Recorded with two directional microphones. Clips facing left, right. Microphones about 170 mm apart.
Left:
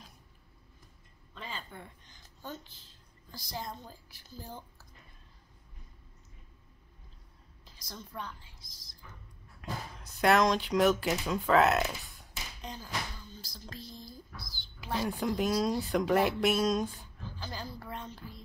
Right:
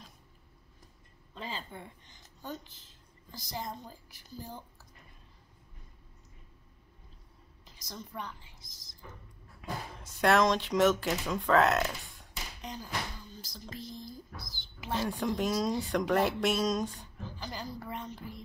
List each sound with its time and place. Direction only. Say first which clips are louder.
1.3 s a sound: right 3 dB; 30° right (ahead or behind); by 2.7 s 15° right (ahead or behind)
3.3 s a woman's voice: right 1 dB; 20° right (ahead or behind)
7.6 s a sound: right 2 dB; 15° right (ahead or behind)
9.6 s speech: right 1 dB; centre (ahead or behind)
12.6 s a woman's voice: right 1 dB; 15° right (ahead or behind)
14.9 s speech: even; 5° left (ahead or behind)
17.4 s a woman's voice: right 1 dB; 15° right (ahead or behind)